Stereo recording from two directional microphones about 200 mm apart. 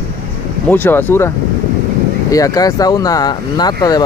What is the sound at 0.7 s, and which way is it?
Speech, 10° left (ahead or behind).